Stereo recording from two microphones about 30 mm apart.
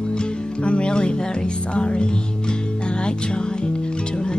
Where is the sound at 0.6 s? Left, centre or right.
Left.